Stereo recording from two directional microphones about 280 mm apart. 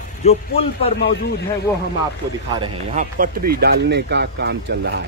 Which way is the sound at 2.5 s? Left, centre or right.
Centre.